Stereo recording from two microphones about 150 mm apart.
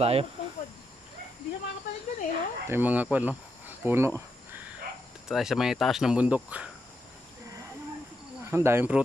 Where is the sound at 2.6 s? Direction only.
10° right (ahead or behind).